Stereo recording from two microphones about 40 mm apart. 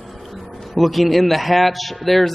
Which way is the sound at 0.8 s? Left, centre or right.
Centre.